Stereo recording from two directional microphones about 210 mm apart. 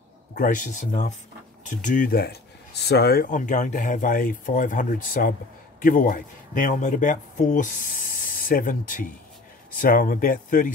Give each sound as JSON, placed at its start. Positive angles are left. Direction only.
{"t": 0.3, "sound": "a man's voice", "side_deg": 40}